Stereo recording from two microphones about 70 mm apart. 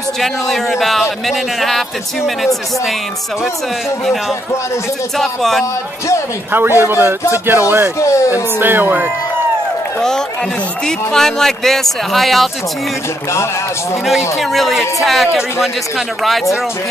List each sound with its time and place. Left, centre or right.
0.2 s speech: centre
5.1 s speech: centre
6.5 s a man's voice: right
8.0 s speech: left
8.3 s speech: right
10.9 s speech: centre
14.3 s speech: centre